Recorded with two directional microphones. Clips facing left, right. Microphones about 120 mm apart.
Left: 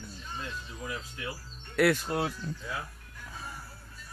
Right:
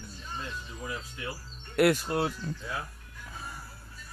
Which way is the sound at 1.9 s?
5° right (ahead or behind).